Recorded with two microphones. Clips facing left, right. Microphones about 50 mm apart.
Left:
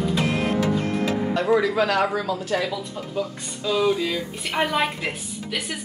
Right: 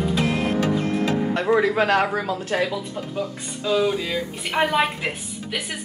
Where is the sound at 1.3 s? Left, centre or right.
Right.